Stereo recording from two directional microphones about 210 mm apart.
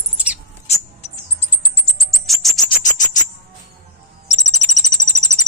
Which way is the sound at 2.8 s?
35° left (ahead or behind).